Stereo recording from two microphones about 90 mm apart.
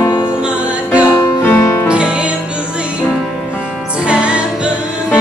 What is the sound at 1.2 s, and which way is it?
Music, 25° left (ahead or behind).